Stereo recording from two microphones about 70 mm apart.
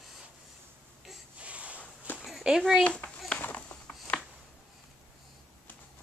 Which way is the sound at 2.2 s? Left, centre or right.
Centre.